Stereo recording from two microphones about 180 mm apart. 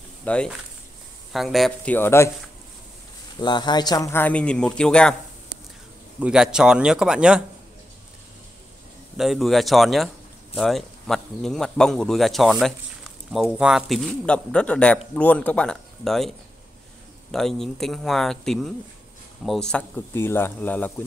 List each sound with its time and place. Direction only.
0.2 s speech: 5° left (ahead or behind)
2.0 s a man's voice: 15° left (ahead or behind)
3.3 s a man's voice: 25° left (ahead or behind); by 5.1 s 5° left (ahead or behind)
6.1 s speech: 5° right (ahead or behind)
9.1 s a man's voice: centre (ahead or behind)